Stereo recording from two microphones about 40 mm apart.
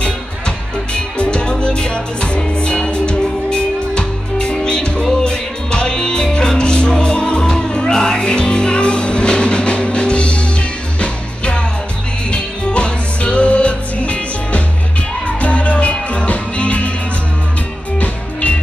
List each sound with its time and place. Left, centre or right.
0.9 s music: left
17.9 s music: left